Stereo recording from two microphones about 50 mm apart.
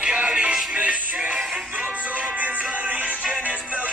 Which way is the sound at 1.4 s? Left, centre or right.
Centre.